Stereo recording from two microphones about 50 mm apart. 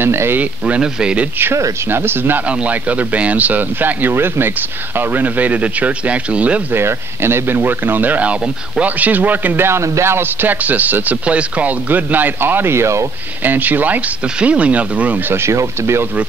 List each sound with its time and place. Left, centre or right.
0.0 s speech: right
0.7 s speech: centre
1.9 s speech: right
2.6 s speech: right
4.1 s speech: right
6.7 s speech: right
9.7 s speech: right
10.5 s speech: right
11.9 s speech: right
12.7 s speech: right
13.4 s speech: right
14.4 s speech: right
15.2 s speech: right
15.5 s speech: right